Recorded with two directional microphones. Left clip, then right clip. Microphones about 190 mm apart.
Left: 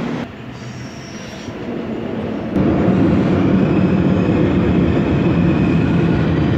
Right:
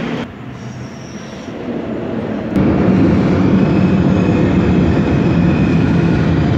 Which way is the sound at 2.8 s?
40° right (ahead or behind).